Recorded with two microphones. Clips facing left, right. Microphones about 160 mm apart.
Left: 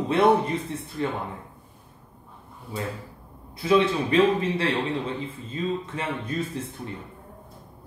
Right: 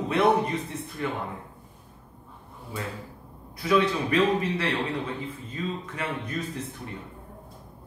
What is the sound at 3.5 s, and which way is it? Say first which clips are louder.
A man's voice: left 2 dB; 25° left (ahead or behind).